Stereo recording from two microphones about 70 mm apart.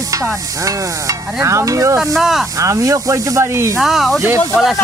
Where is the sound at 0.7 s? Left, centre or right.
Right.